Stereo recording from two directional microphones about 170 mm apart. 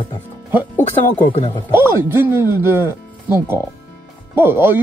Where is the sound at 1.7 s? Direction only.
15° right (ahead or behind).